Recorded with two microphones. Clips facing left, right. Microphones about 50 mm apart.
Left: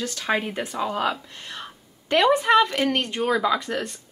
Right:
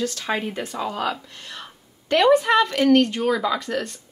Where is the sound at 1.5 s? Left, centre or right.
Centre.